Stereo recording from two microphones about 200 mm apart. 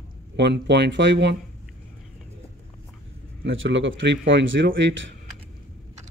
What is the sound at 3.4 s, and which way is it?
A man's voice, 70° right (ahead or behind).